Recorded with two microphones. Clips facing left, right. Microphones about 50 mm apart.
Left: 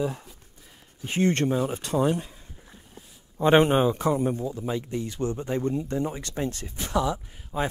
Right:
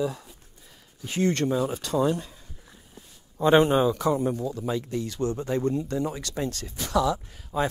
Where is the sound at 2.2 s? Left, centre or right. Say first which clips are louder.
Left 1 dB; centre.